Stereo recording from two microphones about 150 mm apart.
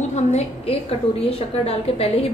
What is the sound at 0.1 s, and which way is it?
A woman's voice, 45° left (ahead or behind).